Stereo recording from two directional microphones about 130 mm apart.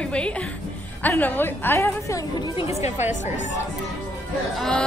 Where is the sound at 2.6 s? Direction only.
55° left (ahead or behind).